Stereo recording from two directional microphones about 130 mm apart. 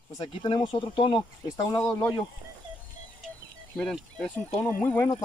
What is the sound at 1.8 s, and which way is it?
Speech, 10° left (ahead or behind).